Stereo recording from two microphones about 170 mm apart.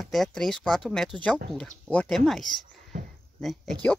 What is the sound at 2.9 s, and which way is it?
Speech, 50° right (ahead or behind).